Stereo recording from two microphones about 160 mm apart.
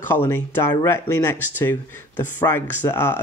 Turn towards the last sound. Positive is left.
turn(degrees=15)  # may be behind; listen again after turning